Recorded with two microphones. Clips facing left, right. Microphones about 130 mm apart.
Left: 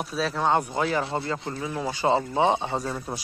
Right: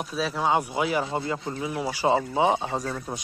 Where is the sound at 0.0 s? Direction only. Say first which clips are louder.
Left 1 dB; centre (ahead or behind).